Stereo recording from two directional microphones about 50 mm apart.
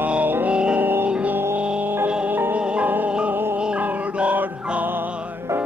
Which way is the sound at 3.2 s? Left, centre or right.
Right.